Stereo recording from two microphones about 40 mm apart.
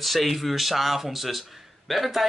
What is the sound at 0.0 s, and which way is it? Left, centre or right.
Speech, centre.